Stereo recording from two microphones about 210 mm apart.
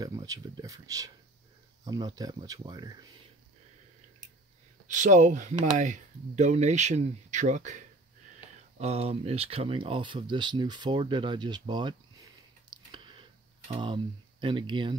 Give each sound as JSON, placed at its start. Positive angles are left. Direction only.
{"t": 0.0, "sound": "speech", "side_deg": -15}
{"t": 4.8, "sound": "speech", "side_deg": -35}
{"t": 12.6, "sound": "computer keyboard", "side_deg": -20}